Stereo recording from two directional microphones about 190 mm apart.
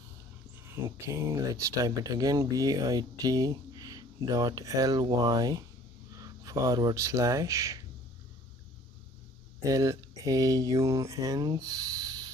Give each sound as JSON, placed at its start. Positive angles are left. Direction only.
{"t": 1.0, "sound": "speech", "side_deg": -15}
{"t": 9.6, "sound": "speech", "side_deg": -15}